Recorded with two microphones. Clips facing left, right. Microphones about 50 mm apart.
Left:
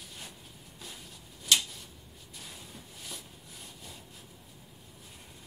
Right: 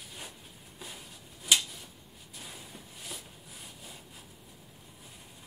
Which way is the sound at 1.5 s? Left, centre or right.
Centre.